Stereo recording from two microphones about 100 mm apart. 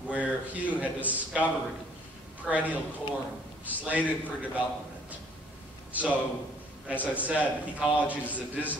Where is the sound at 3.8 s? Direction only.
15° right (ahead or behind).